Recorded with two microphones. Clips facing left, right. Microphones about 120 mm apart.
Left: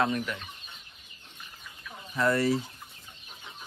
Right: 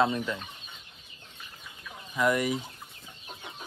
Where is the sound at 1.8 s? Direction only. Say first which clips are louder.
Even; 15° right (ahead or behind).